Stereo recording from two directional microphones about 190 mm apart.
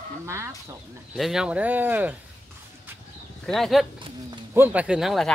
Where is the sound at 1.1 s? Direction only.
Centre (ahead or behind).